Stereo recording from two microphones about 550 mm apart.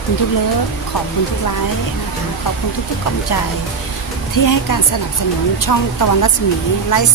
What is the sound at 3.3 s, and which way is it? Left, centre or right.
Speech, left.